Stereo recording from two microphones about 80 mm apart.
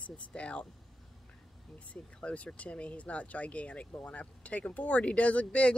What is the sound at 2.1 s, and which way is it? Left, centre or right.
Speech, centre.